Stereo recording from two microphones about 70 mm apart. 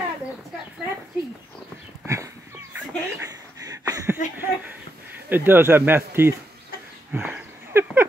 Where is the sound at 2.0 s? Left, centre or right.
Right.